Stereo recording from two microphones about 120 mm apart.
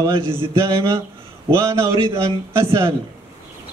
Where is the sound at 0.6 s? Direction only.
30° right (ahead or behind).